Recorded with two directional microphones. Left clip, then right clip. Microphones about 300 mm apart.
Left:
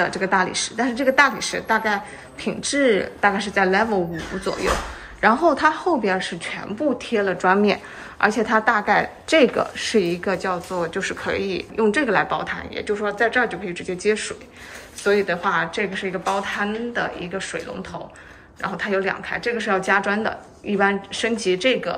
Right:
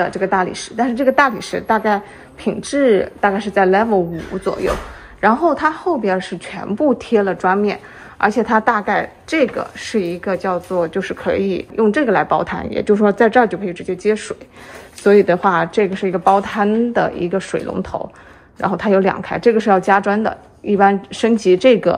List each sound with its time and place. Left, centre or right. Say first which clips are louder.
0.0 s a woman's voice: right 3 dB; centre
5.2 s a woman's voice: right 2 dB; centre